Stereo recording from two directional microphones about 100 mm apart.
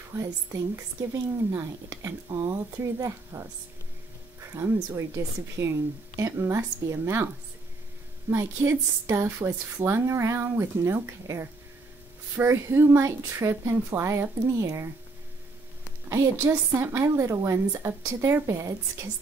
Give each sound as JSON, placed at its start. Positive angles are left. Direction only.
{"t": 0.1, "sound": "speech", "side_deg": -20}
{"t": 4.6, "sound": "speech", "side_deg": -30}
{"t": 8.3, "sound": "speech", "side_deg": -25}
{"t": 16.1, "sound": "speech", "side_deg": -30}